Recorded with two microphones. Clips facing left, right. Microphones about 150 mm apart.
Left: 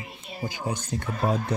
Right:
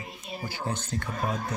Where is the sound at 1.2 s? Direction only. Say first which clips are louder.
Left 6 dB; 30° left (ahead or behind).